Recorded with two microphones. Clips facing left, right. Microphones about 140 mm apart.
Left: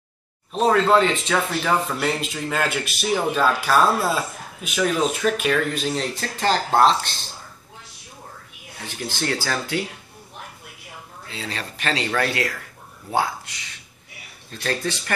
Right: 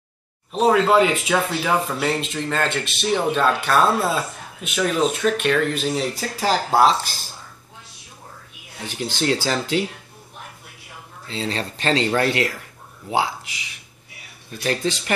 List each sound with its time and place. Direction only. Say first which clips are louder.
0.5 s speech: right 1 dB; centre (ahead or behind)
8.8 s speech: right 4 dB; 20° right (ahead or behind)
11.2 s speech: right 6 dB; 30° right (ahead or behind)